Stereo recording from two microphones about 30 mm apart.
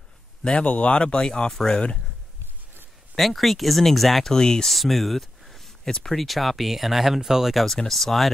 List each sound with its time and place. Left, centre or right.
0.4 s speech: left
0.7 s speech: left
0.9 s speech: left
3.2 s speech: centre
4.3 s speech: left
4.6 s speech: centre
7.6 s speech: centre